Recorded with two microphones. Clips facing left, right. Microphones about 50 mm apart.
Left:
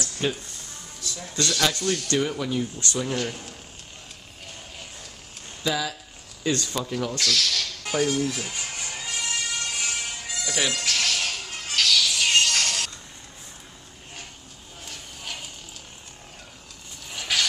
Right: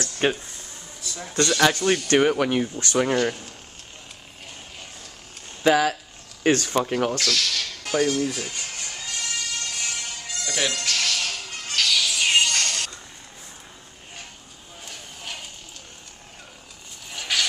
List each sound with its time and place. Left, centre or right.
0.2 s speech: right
1.7 s speech: right
5.6 s speech: right
7.2 s music: centre
11.9 s music: centre
17.1 s vehicle: centre